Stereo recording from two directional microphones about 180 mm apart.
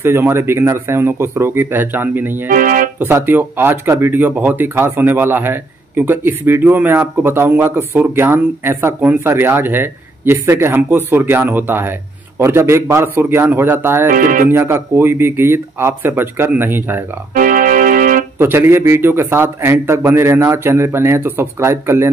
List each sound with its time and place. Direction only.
0.0 s speech: 15° right (ahead or behind)
2.4 s speech: 50° right (ahead or behind)
3.0 s speech: 10° right (ahead or behind)
14.0 s speech: 50° right (ahead or behind)
14.5 s speech: 15° right (ahead or behind)
17.3 s organ: 50° right (ahead or behind)
18.4 s speech: 15° right (ahead or behind)